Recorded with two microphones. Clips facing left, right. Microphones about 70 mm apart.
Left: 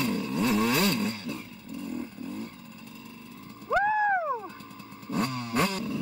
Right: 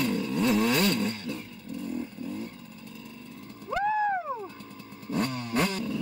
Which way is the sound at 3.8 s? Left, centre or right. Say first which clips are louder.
Right 1 dB; left.